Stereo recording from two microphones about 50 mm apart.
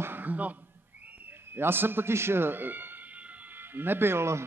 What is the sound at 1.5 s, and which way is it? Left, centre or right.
A man's voice, right.